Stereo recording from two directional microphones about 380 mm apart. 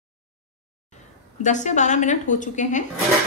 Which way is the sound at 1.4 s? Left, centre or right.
Centre.